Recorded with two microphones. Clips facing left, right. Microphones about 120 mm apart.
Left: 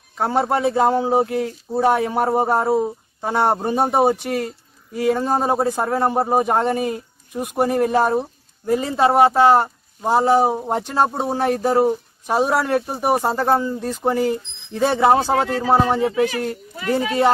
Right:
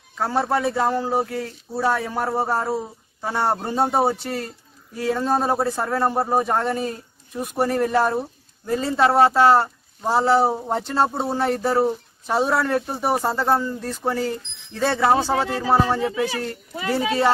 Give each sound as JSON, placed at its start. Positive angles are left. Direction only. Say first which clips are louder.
{"t": 0.2, "sound": "a man's voice", "louder": "left 3 dB", "side_deg": 20}